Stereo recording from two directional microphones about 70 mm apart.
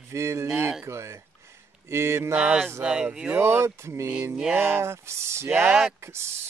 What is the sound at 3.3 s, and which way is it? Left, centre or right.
Cattle, right.